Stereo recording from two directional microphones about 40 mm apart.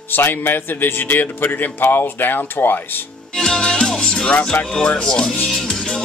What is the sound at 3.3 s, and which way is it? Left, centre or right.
Music, centre.